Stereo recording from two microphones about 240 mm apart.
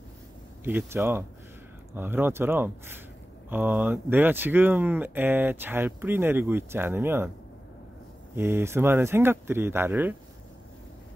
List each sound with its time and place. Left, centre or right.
0.7 s speech: centre
8.4 s speech: centre